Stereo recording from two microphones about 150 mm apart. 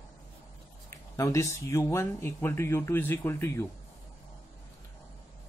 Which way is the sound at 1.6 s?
20° left (ahead or behind).